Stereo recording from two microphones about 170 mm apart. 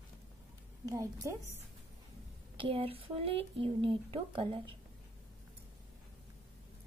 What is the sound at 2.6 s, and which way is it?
Speech, 30° right (ahead or behind).